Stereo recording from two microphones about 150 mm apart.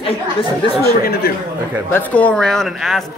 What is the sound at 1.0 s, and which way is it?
Speech, 90° left.